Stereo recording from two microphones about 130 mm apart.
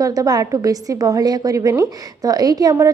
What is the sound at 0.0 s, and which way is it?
A woman's voice, 25° right (ahead or behind).